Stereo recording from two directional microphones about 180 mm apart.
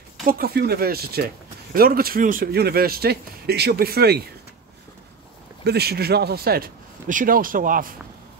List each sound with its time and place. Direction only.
0.2 s speech: 55° right (ahead or behind)
5.6 s speech: 65° right (ahead or behind)